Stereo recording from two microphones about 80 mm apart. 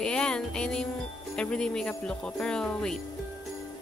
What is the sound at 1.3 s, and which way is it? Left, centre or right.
Speech, centre.